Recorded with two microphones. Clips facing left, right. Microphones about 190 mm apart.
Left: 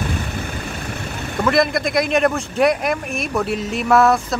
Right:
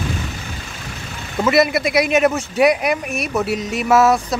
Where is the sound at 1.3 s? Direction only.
5° right (ahead or behind).